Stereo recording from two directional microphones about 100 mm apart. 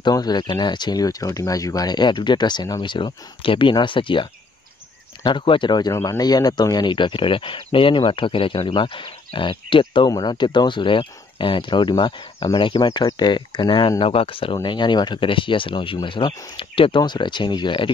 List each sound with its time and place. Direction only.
0.0 s speech: 45° left (ahead or behind)
10.0 s speech: 45° left (ahead or behind)